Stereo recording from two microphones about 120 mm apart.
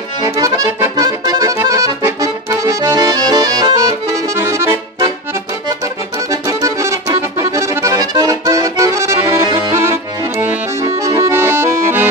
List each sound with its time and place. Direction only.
0.2 s accordion: 30° right (ahead or behind)
6.6 s accordion: 25° right (ahead or behind)